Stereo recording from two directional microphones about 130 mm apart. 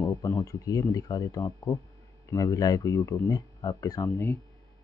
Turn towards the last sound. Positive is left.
turn(degrees=25)  # may be behind; listen again after turning